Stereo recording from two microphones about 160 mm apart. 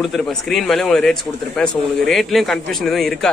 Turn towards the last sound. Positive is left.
turn(degrees=0)  # may be behind; listen again after turning